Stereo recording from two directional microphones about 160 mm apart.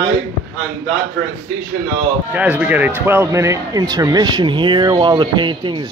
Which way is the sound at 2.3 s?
10° right (ahead or behind).